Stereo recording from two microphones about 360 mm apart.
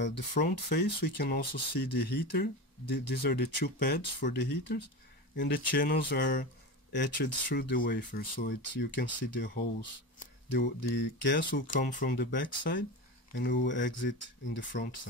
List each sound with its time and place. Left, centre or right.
0.0 s speech: left
11.0 s speech: left